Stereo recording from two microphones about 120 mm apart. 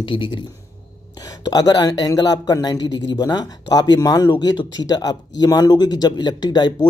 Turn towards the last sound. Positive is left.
turn(degrees=35)  # may be behind; listen again after turning